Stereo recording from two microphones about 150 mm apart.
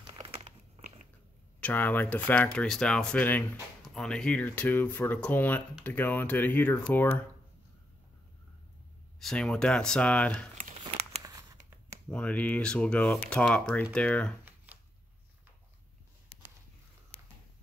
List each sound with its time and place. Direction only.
0.2 s crumpling: 40° right (ahead or behind)
1.6 s speech: 10° left (ahead or behind)
9.2 s speech: 5° left (ahead or behind)
11.2 s a sound: 20° right (ahead or behind)
12.1 s speech: 10° left (ahead or behind)